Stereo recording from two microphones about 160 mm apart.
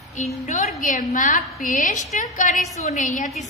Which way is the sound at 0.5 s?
50° left (ahead or behind).